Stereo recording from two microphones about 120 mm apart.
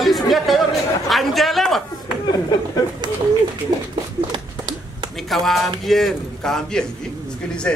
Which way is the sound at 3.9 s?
40° right (ahead or behind).